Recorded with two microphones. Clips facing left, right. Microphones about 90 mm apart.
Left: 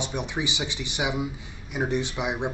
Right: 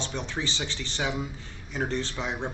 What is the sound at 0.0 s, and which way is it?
Speech, 15° left (ahead or behind).